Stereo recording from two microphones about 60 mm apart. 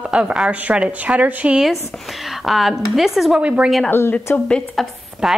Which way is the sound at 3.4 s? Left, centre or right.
Right.